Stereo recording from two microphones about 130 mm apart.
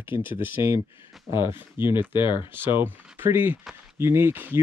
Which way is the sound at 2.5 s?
15° right (ahead or behind).